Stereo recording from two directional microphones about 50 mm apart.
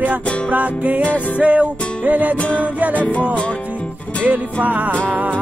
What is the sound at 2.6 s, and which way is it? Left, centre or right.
Music, right.